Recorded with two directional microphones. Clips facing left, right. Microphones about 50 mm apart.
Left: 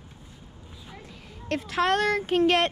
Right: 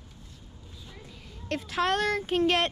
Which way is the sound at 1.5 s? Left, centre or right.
Left.